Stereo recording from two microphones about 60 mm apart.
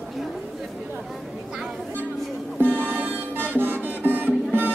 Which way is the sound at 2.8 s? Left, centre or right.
Right.